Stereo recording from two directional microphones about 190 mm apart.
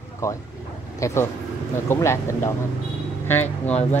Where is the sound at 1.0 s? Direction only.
15° left (ahead or behind).